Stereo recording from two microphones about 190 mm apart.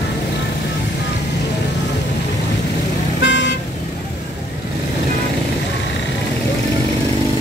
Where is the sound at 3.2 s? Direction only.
75° left (ahead or behind).